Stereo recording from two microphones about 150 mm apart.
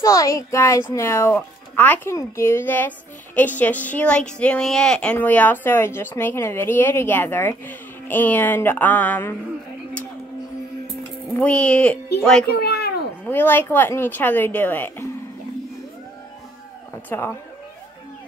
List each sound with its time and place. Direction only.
0.0 s a woman's voice: 20° left (ahead or behind)
11.3 s a woman's voice: 10° left (ahead or behind)
12.5 s a sound: 90° left
13.2 s a woman's voice: 15° left (ahead or behind)
17.1 s a woman's voice: 15° left (ahead or behind)